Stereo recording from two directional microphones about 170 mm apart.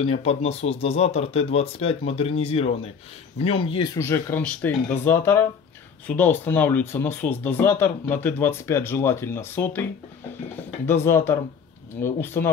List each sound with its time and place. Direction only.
0.0 s speech: 40° left (ahead or behind); by 9.8 s 10° left (ahead or behind)
10.9 s speech: 15° left (ahead or behind)